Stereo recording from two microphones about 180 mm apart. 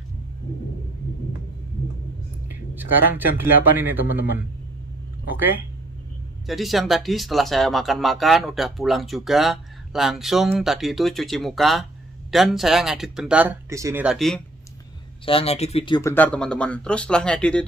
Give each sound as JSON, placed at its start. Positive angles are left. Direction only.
{"t": 2.4, "sound": "a sound", "side_deg": -10}
{"t": 3.7, "sound": "speech", "side_deg": -10}
{"t": 6.4, "sound": "speech", "side_deg": 0}
{"t": 14.0, "sound": "speech", "side_deg": 0}
{"t": 15.2, "sound": "speech", "side_deg": 35}
{"t": 16.0, "sound": "speech", "side_deg": 10}